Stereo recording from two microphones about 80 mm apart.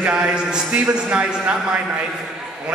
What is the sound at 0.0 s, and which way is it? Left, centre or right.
A man's voice, centre.